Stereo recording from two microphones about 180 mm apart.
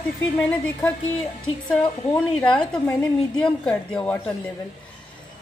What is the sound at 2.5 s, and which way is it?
A woman's voice, 5° left (ahead or behind).